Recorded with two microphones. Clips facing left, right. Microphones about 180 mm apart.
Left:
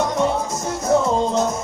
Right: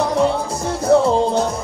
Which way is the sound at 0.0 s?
30° right (ahead or behind).